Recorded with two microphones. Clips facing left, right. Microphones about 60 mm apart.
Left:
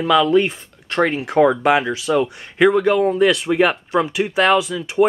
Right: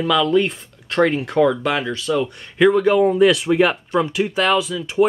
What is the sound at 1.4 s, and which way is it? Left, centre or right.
Speech, left.